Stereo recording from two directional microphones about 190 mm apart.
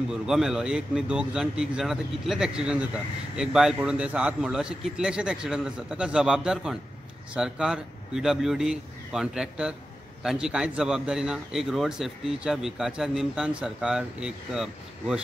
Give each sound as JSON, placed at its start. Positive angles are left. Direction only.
{"t": 0.1, "sound": "a man's voice", "side_deg": 0}